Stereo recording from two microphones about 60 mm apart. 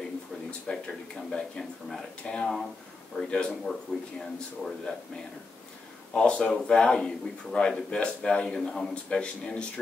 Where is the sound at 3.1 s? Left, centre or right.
Centre.